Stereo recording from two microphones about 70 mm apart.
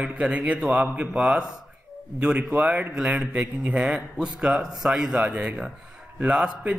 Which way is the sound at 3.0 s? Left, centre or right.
Centre.